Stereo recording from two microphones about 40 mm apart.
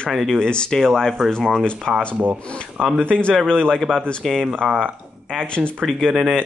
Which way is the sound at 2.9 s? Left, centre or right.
Left.